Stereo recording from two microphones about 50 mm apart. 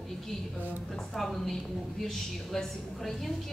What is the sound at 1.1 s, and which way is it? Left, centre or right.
A woman's voice, centre.